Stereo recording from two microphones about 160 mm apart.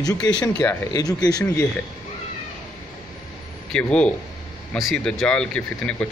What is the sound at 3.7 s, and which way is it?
Speech, 5° left (ahead or behind).